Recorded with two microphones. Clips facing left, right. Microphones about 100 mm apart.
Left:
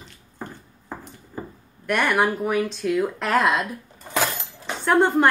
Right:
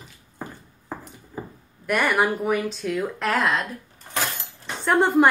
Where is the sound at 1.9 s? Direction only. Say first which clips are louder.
Even; centre (ahead or behind).